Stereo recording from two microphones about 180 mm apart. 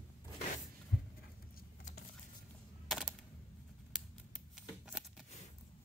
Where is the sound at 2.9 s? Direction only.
Centre (ahead or behind).